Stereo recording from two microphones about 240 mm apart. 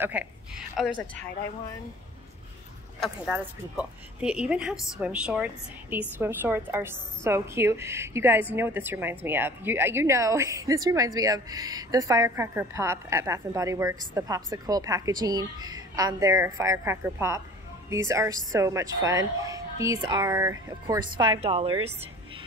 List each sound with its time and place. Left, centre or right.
0.0 s a woman's voice: centre
3.0 s a woman's voice: centre; by 21.8 s right